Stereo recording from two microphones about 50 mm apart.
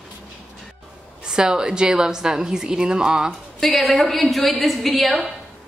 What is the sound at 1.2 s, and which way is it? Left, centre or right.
A woman's voice, centre.